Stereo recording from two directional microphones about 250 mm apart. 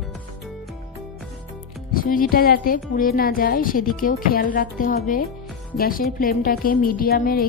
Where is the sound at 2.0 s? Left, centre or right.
Left.